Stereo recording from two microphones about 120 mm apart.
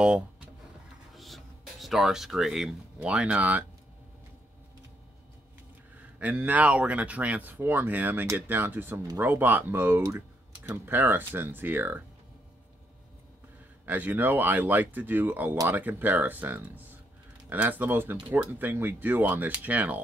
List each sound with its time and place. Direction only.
1.1 s speech: centre (ahead or behind)
5.9 s speech: 15° right (ahead or behind)
13.8 s speech: 15° right (ahead or behind)